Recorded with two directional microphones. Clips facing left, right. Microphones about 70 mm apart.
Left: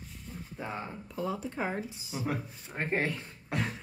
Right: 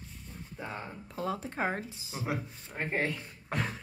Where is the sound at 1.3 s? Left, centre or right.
Right.